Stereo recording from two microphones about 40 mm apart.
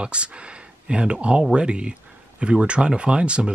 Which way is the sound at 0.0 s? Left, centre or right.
Right.